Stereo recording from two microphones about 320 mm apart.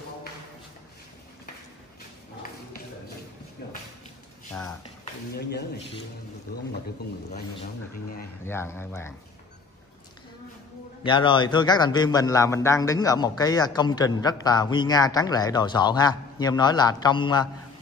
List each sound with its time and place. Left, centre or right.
5.3 s speech: left
8.5 s a man's voice: centre
11.1 s a man's voice: centre